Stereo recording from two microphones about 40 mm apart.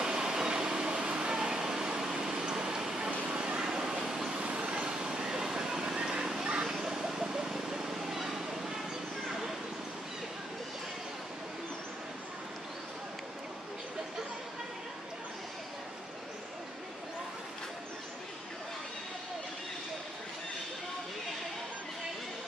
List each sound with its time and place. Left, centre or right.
0.0 s a sound: centre
3.3 s vehicle: right
4.4 s vehicle: right; by 8.7 s centre